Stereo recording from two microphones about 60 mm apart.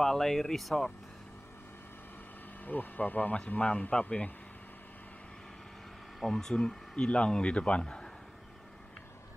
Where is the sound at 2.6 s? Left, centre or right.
Left.